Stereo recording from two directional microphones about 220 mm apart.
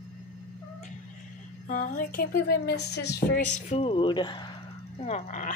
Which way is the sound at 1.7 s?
40° left (ahead or behind).